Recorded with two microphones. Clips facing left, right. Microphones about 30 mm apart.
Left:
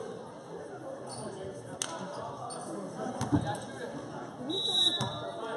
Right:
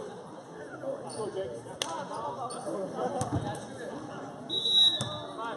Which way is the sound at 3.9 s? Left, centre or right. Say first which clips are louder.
Right 1 dB; centre.